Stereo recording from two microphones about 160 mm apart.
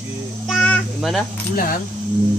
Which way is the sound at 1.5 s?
60° left (ahead or behind).